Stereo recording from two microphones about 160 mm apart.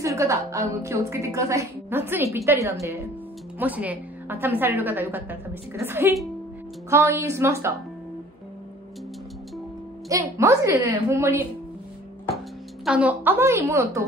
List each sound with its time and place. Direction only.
0.0 s a woman's voice: 20° right (ahead or behind)
10.0 s a woman's voice: 20° right (ahead or behind)
12.8 s a woman's voice: 10° right (ahead or behind)